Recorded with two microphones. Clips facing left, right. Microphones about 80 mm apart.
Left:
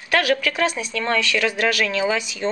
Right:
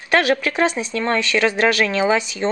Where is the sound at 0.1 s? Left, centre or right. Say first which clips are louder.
Right 2 dB; right.